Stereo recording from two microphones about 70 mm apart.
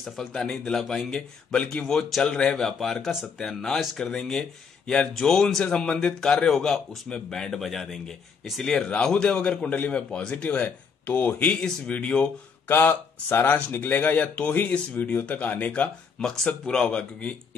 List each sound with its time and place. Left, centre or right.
0.0 s speech: centre
1.6 s speech: centre
1.9 s speech: centre
12.6 s speech: left
16.2 s speech: centre